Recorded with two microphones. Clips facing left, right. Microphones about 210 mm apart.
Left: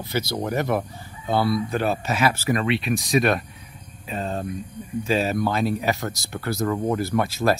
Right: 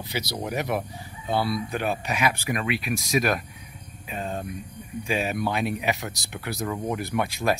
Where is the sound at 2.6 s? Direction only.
25° left (ahead or behind).